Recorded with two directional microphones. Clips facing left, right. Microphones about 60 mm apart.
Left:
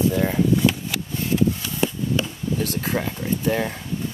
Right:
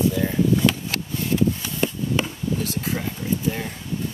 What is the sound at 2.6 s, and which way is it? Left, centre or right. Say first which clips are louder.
Speech: left 2 dB; left.